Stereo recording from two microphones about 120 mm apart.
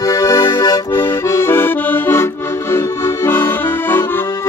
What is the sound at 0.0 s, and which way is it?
Accordion, 30° left (ahead or behind).